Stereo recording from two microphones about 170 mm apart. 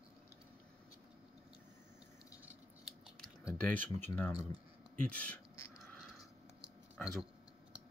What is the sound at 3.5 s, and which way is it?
Speech, 10° left (ahead or behind).